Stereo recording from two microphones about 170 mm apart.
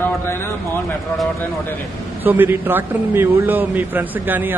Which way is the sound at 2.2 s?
10° right (ahead or behind).